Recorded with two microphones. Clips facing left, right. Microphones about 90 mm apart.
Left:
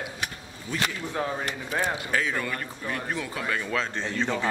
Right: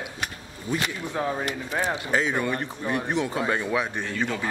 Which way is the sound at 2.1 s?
20° right (ahead or behind).